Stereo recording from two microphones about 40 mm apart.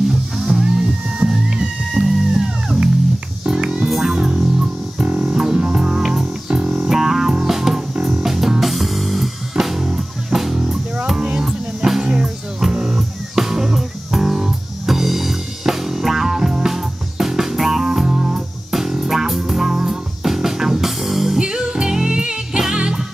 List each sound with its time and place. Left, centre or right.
0.1 s music: centre
5.3 s music: centre
21.4 s music: centre